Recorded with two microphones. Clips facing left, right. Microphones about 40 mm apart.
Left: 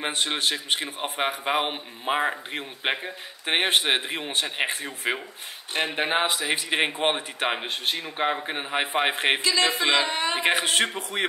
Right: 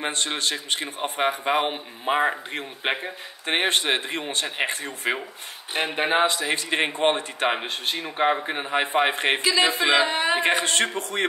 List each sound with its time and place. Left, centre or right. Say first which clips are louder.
0.0 s a man's voice: even; centre
6.2 s a man's voice: right 2 dB; centre
8.0 s a man's voice: right 4 dB; centre
9.4 s speech: right 2 dB; centre
10.4 s a man's voice: right 1 dB; centre